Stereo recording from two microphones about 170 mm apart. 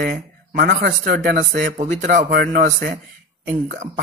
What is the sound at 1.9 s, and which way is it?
Speech, 45° right (ahead or behind).